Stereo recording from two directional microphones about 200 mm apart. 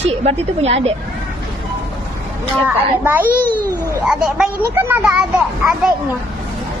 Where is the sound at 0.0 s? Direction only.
30° right (ahead or behind).